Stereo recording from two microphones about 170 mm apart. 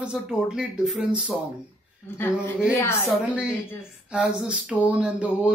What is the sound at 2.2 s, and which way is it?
Speech, 15° left (ahead or behind).